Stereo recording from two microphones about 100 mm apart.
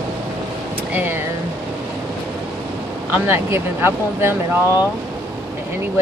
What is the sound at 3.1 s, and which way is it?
Speech, 25° right (ahead or behind).